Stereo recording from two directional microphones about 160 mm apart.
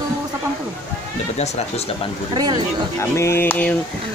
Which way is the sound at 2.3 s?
25° right (ahead or behind).